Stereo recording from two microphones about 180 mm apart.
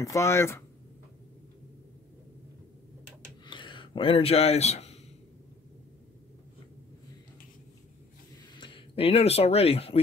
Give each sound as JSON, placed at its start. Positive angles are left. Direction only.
{"t": 0.0, "sound": "speech", "side_deg": 15}
{"t": 3.4, "sound": "a sound", "side_deg": 25}
{"t": 8.5, "sound": "speech", "side_deg": 25}